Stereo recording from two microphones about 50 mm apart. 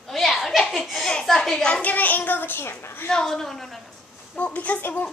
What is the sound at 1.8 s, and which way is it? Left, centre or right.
A child's voice, left.